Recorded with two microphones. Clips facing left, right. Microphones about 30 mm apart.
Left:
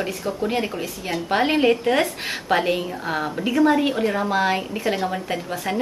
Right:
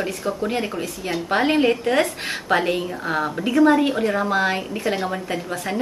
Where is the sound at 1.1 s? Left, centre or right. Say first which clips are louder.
Right 1 dB; centre.